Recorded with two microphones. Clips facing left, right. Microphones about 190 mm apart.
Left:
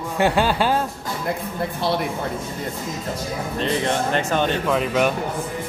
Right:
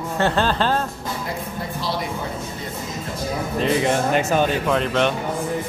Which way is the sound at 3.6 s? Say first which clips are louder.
Right 3 dB; 10° right (ahead or behind).